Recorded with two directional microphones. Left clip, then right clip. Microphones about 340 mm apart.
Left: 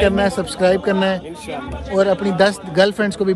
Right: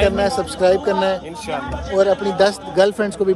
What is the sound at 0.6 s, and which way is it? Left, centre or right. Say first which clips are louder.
Speech: even; left.